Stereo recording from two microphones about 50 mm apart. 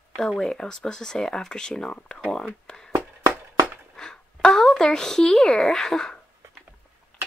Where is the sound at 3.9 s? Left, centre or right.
Centre.